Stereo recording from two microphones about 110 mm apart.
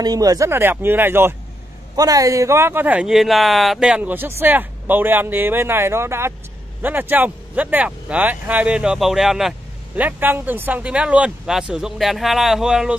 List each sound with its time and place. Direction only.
0.0 s speech: 35° right (ahead or behind)
0.5 s speech: 20° right (ahead or behind)
2.0 s speech: 35° right (ahead or behind); by 9.6 s 5° right (ahead or behind)
9.9 s speech: 15° right (ahead or behind)